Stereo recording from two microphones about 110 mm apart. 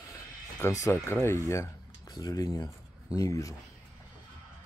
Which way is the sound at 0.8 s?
25° left (ahead or behind).